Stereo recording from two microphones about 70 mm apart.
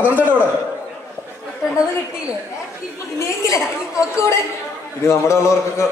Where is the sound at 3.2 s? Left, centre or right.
Left.